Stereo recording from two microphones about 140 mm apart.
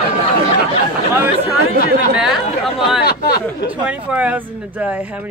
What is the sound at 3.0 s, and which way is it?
Speech, 90° left.